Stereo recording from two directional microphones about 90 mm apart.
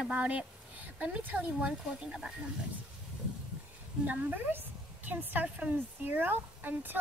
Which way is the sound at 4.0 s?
20° right (ahead or behind).